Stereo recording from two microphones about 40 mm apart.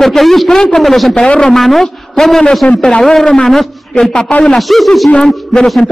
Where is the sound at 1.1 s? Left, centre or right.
Left.